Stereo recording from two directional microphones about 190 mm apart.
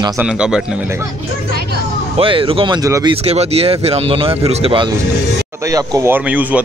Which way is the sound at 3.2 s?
30° right (ahead or behind).